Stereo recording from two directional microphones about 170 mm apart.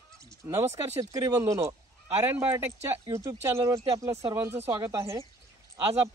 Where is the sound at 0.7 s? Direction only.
40° right (ahead or behind).